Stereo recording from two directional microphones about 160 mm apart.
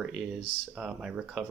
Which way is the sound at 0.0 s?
5° right (ahead or behind).